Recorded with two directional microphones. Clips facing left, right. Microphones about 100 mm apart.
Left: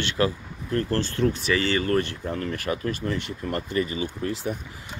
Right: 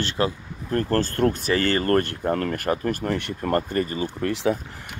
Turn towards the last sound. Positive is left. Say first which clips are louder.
# right 7 dB
turn(degrees=-70)  # may be behind; listen again after turning